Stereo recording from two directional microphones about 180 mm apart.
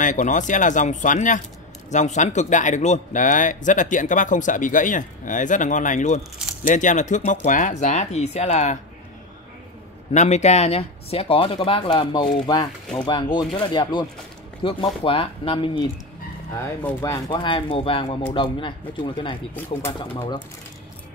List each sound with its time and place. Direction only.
0.0 s a man's voice: 45° left (ahead or behind)
10.1 s speech: 40° left (ahead or behind)
16.5 s speech: 15° left (ahead or behind)
17.3 s speech: 30° left (ahead or behind)